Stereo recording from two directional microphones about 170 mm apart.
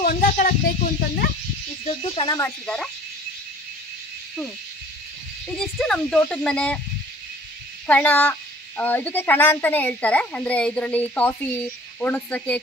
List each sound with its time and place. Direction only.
0.0 s speech: 60° left (ahead or behind)
2.0 s speech: 30° left (ahead or behind)
2.6 s speech: 5° left (ahead or behind)
5.6 s speech: 5° left (ahead or behind)
7.8 s speech: 10° left (ahead or behind)